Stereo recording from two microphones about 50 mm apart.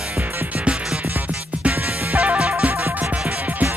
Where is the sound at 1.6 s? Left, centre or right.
Right.